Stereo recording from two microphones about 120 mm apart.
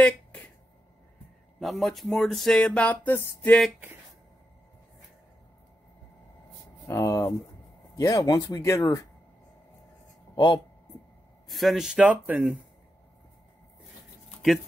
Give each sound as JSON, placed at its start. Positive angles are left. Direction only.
{"t": 0.0, "sound": "a sound", "side_deg": 10}
{"t": 1.6, "sound": "speech", "side_deg": 0}
{"t": 6.9, "sound": "speech", "side_deg": 25}
{"t": 10.3, "sound": "speech", "side_deg": 40}
{"t": 11.4, "sound": "speech", "side_deg": 0}